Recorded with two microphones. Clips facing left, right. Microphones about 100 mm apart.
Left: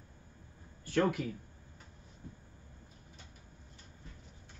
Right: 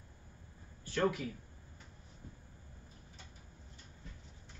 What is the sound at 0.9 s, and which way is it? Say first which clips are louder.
Speech: left 3 dB; 55° left (ahead or behind).